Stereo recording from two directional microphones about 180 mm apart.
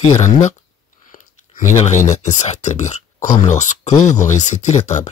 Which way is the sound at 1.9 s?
15° left (ahead or behind).